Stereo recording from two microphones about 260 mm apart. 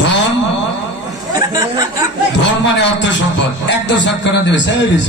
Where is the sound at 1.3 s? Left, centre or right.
Centre.